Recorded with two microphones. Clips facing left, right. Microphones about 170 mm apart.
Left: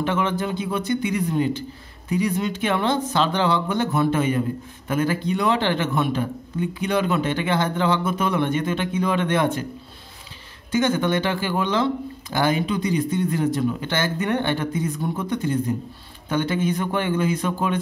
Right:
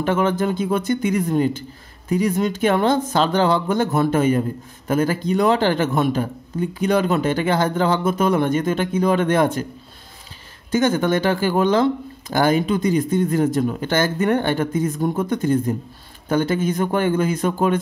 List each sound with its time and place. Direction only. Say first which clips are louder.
0.0 s speech: right 4 dB; 45° right (ahead or behind)
10.7 s speech: right 3 dB; 45° right (ahead or behind)